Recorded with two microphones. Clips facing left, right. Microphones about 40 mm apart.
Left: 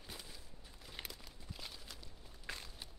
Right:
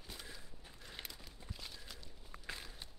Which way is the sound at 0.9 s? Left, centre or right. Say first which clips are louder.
Left 1 dB; centre.